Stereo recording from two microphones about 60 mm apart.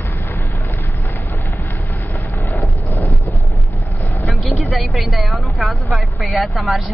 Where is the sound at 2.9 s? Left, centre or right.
Left.